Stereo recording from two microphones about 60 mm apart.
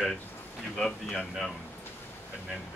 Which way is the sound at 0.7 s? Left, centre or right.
Centre.